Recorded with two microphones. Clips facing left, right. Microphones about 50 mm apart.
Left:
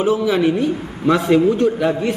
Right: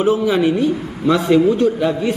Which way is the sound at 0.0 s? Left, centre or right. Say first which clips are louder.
Right 1 dB; right.